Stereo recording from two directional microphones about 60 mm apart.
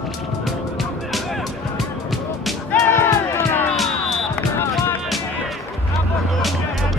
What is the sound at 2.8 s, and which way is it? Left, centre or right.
Music, left.